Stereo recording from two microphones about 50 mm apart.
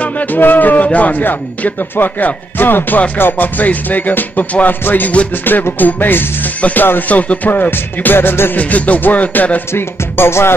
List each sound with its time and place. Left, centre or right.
0.0 s a man's voice: left
8.5 s speech: left
9.7 s music: left